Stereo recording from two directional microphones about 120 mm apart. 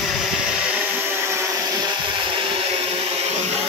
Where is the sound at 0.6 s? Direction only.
10° right (ahead or behind).